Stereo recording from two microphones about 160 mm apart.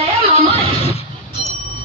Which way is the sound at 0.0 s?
40° right (ahead or behind).